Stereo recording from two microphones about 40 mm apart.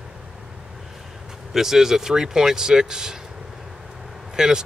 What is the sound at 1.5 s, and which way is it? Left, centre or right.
Speech, centre.